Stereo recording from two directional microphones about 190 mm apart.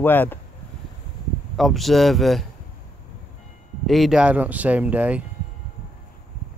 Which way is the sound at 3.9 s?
Centre (ahead or behind).